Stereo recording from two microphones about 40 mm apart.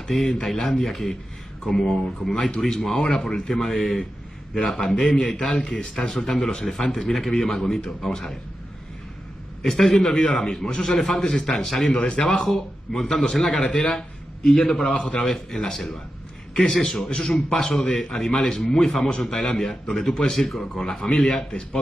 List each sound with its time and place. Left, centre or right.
0.1 s a man's voice: centre
3.4 s speech: centre
4.7 s a man's voice: centre
5.4 s a man's voice: centre
9.6 s a man's voice: centre
11.5 s speech: centre
12.1 s speech: centre
12.4 s a man's voice: centre
15.0 s a man's voice: left
15.2 s a man's voice: centre